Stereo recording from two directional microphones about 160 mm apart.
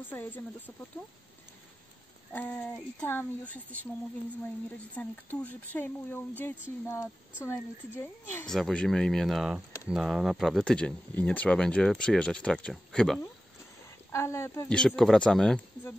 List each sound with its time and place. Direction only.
0.0 s speech: 10° left (ahead or behind)
2.3 s speech: 10° left (ahead or behind)
8.5 s speech: centre (ahead or behind)
13.8 s a woman's voice: 15° left (ahead or behind)
14.7 s speech: 5° left (ahead or behind)